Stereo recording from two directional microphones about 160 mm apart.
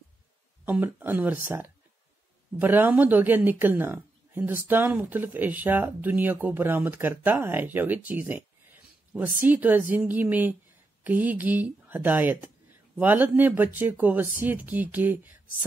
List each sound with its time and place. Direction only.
0.7 s speech: 10° right (ahead or behind)